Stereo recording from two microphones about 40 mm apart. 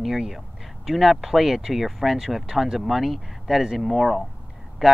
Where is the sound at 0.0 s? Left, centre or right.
Centre.